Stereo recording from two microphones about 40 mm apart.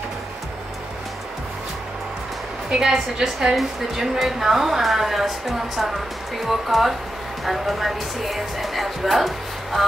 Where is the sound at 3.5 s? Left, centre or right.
Centre.